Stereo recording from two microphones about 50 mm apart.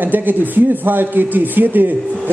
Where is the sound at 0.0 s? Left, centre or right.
Right.